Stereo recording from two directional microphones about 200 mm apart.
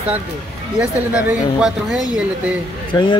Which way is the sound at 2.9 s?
20° left (ahead or behind).